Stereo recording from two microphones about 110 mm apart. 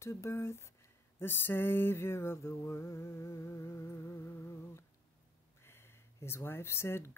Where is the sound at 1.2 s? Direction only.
20° left (ahead or behind).